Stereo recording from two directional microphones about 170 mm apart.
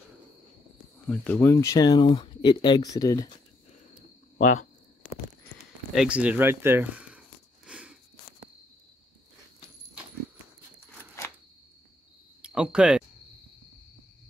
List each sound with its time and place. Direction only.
1.0 s speech: 10° left (ahead or behind)
4.4 s speech: 45° left (ahead or behind)
5.9 s a sound: 5° right (ahead or behind)
12.4 s cricket: 5° right (ahead or behind)